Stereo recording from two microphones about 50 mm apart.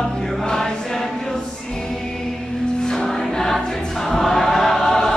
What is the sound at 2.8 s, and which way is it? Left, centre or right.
Music, centre.